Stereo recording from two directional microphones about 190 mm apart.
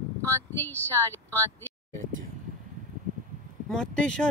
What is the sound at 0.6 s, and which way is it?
Speech, 10° left (ahead or behind).